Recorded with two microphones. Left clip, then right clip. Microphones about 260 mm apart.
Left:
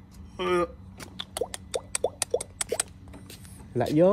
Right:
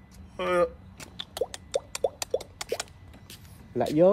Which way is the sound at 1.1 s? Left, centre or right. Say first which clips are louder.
Even; left.